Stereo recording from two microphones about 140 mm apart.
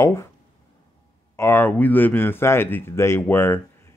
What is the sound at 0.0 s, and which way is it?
Speech, 20° left (ahead or behind).